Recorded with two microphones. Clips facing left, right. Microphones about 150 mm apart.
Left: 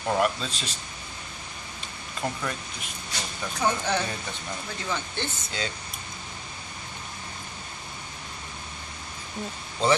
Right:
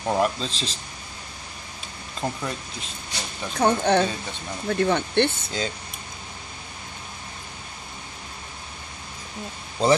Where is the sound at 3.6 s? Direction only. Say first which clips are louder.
Right 7 dB; 60° right (ahead or behind).